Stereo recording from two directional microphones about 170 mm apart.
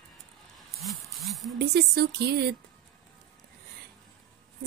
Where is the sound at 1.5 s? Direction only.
70° right (ahead or behind).